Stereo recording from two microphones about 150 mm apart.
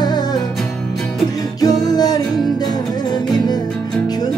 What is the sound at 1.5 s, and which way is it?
Music, 25° left (ahead or behind).